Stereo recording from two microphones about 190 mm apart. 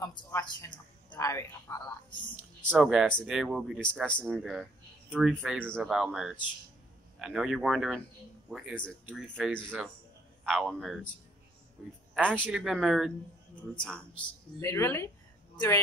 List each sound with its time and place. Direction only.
0.0 s speech: 15° left (ahead or behind)
2.7 s speech: 5° right (ahead or behind)
12.1 s speech: 10° right (ahead or behind); by 15.0 s 15° left (ahead or behind)